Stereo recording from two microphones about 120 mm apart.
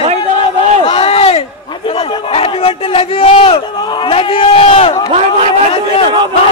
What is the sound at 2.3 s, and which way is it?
Crowd, 55° left (ahead or behind).